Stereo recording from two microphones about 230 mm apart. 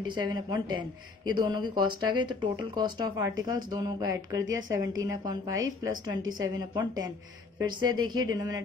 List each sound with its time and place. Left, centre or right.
0.0 s speech: centre